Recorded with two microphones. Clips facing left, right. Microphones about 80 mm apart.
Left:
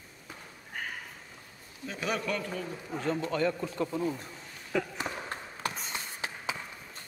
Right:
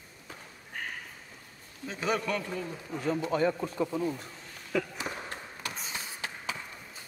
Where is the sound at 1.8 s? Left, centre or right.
Right.